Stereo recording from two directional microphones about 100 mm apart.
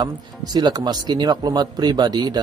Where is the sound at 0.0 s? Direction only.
45° right (ahead or behind).